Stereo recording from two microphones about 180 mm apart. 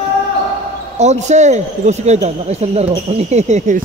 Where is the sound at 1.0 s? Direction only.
40° right (ahead or behind).